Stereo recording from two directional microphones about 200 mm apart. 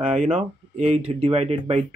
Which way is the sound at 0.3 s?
35° right (ahead or behind).